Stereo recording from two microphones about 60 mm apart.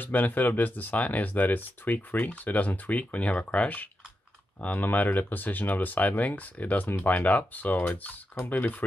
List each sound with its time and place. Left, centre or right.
0.0 s speech: left